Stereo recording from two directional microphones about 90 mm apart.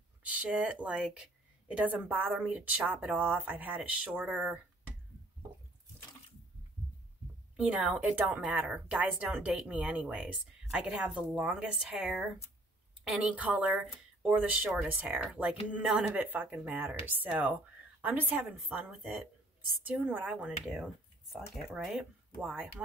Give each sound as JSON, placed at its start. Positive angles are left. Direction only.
{"t": 0.2, "sound": "speech", "side_deg": -15}
{"t": 7.5, "sound": "speech", "side_deg": -10}
{"t": 15.8, "sound": "speech", "side_deg": -5}
{"t": 16.2, "sound": "speech", "side_deg": -20}
{"t": 20.0, "sound": "speech", "side_deg": -15}